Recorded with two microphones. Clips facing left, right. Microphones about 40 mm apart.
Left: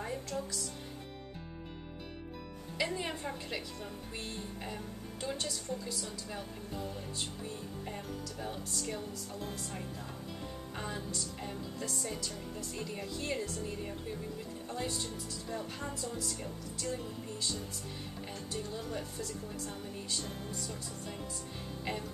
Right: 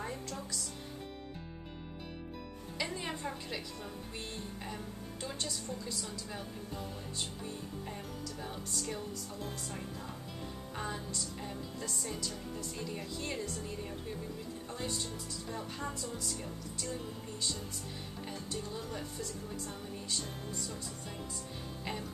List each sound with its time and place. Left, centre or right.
0.0 s music: centre
2.8 s music: centre
5.2 s a woman's voice: centre
8.8 s a woman's voice: centre
10.8 s a woman's voice: centre
15.5 s a woman's voice: centre
18.5 s a woman's voice: centre